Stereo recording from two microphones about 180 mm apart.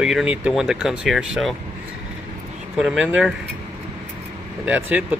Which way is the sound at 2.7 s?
Centre (ahead or behind).